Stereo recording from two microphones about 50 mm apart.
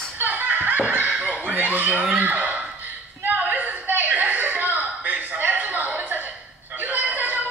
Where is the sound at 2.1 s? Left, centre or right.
Right.